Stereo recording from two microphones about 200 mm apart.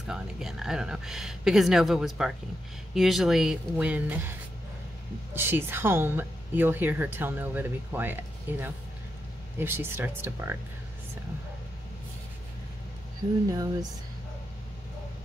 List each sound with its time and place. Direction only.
0.0 s speech: centre (ahead or behind)
5.3 s a woman's voice: 10° right (ahead or behind)
13.5 s a woman's voice: 20° right (ahead or behind)